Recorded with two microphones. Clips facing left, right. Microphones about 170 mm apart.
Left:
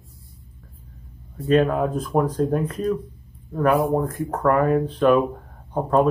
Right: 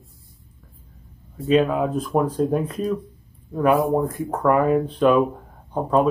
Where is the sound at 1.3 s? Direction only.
Centre (ahead or behind).